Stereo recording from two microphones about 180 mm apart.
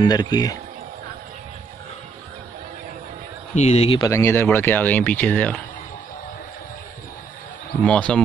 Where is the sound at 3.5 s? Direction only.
40° left (ahead or behind).